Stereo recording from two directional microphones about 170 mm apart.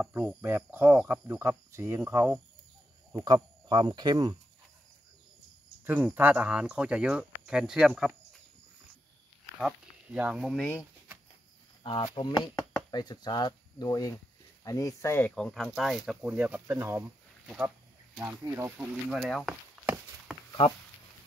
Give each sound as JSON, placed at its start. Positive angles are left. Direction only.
{"t": 0.0, "sound": "speech", "side_deg": -5}
{"t": 3.3, "sound": "speech", "side_deg": -25}
{"t": 5.9, "sound": "speech", "side_deg": -10}
{"t": 9.6, "sound": "speech", "side_deg": -5}
{"t": 11.8, "sound": "speech", "side_deg": 30}
{"t": 18.8, "sound": "speech", "side_deg": 0}